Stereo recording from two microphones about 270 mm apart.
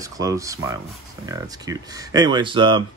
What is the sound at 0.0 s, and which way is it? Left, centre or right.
Speech, centre.